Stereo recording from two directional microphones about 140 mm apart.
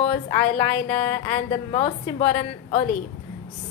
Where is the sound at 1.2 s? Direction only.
40° left (ahead or behind).